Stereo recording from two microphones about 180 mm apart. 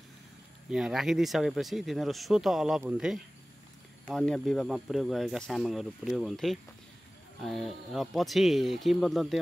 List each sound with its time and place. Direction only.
0.7 s speech: 5° right (ahead or behind)